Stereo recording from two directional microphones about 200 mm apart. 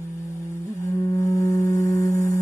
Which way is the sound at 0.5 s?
15° left (ahead or behind).